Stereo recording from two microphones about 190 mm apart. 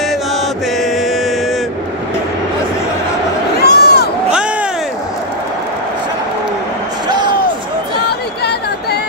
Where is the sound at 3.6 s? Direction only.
55° left (ahead or behind).